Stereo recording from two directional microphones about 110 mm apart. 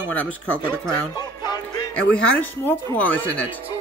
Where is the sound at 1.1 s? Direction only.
40° left (ahead or behind).